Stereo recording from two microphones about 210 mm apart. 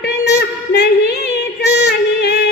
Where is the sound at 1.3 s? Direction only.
50° left (ahead or behind).